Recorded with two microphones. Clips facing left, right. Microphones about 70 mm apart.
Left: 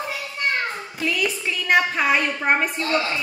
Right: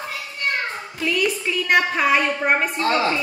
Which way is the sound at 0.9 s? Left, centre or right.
Centre.